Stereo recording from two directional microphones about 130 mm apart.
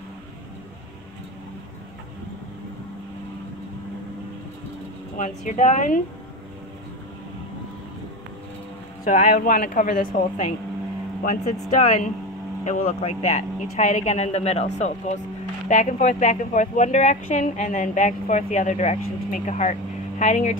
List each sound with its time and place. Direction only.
5.1 s speech: 75° left (ahead or behind)
9.0 s a woman's voice: 90° left
11.2 s speech: 70° left (ahead or behind)
15.7 s speech: 75° left (ahead or behind)